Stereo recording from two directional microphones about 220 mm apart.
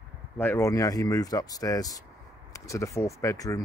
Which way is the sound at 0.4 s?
10° left (ahead or behind).